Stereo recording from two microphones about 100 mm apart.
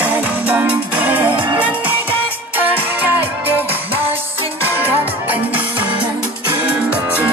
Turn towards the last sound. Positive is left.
turn(degrees=-15)  # may be behind; listen again after turning